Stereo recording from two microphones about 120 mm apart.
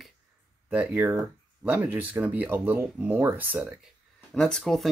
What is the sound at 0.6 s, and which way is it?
Speech, 15° right (ahead or behind).